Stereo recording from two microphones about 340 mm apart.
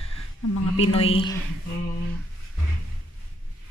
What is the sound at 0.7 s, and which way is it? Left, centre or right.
Speech, centre.